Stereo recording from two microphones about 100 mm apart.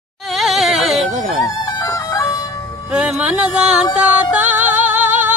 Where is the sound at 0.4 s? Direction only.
Centre (ahead or behind).